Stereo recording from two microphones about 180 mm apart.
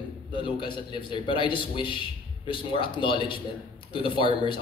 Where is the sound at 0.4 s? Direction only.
30° left (ahead or behind).